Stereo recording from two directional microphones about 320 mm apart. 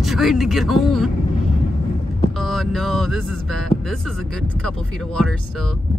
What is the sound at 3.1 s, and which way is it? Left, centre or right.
Music, left.